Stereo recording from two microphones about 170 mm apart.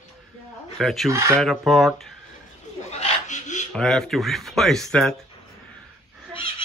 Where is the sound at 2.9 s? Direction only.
45° left (ahead or behind).